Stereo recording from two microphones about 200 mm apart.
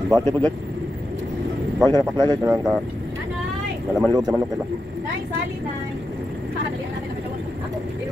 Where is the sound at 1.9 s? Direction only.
15° left (ahead or behind).